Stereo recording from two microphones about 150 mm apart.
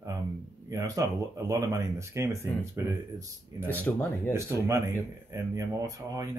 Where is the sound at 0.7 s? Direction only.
25° right (ahead or behind).